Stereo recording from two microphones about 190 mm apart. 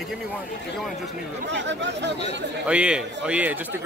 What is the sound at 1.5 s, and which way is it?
Speech, 70° right (ahead or behind).